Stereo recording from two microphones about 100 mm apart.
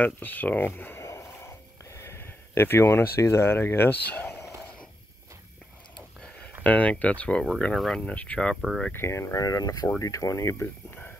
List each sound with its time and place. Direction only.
0.0 s a sound: 15° left (ahead or behind)
6.6 s speech: 15° left (ahead or behind)
8.5 s speech: 5° right (ahead or behind)
8.9 s speech: 25° left (ahead or behind)